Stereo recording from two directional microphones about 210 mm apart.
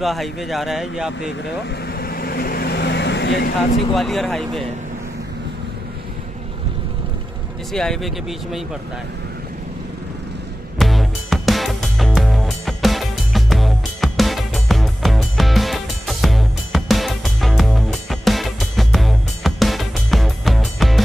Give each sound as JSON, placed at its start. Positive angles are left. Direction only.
{"t": 0.0, "sound": "a man's voice", "side_deg": 0}
{"t": 2.0, "sound": "vehicle", "side_deg": 45}
{"t": 3.9, "sound": "a man's voice", "side_deg": 0}
{"t": 7.7, "sound": "a man's voice", "side_deg": 0}
{"t": 10.8, "sound": "music", "side_deg": 0}